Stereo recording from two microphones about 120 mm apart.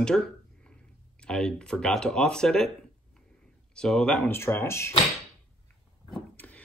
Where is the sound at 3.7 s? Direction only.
5° left (ahead or behind).